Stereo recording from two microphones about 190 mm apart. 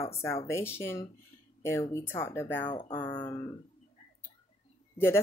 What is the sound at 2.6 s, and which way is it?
Speech, 25° left (ahead or behind).